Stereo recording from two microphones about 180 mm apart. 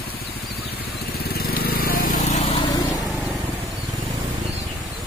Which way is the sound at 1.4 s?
60° left (ahead or behind).